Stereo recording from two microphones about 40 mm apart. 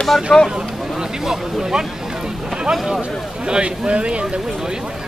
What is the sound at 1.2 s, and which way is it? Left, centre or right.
Speech, centre.